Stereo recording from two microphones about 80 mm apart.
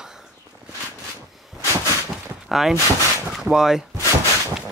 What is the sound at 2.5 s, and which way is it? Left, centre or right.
Speech, centre.